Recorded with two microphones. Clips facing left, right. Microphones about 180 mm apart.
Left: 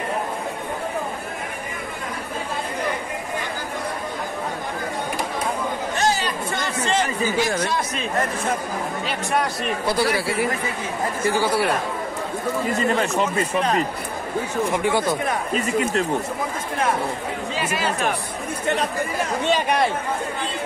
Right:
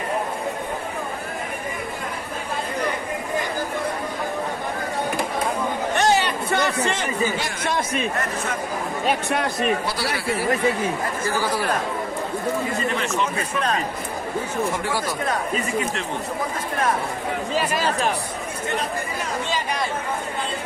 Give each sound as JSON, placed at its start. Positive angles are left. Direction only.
{"t": 5.9, "sound": "chatter", "side_deg": -65}
{"t": 7.6, "sound": "a man's voice", "side_deg": -55}
{"t": 14.8, "sound": "speech", "side_deg": 20}
{"t": 19.4, "sound": "speech", "side_deg": 65}